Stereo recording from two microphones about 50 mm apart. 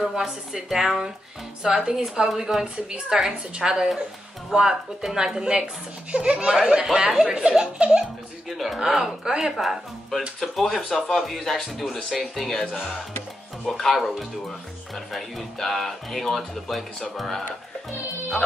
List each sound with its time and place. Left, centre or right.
0.0 s a woman's voice: centre
8.5 s speech: centre
8.7 s a woman's voice: centre
9.6 s speech: centre
13.7 s speech: centre
15.1 s speech: centre